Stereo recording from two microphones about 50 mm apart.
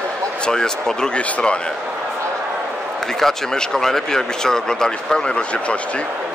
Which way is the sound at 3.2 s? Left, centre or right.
Centre.